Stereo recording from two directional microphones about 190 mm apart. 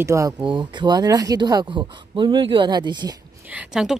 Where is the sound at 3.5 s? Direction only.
5° right (ahead or behind).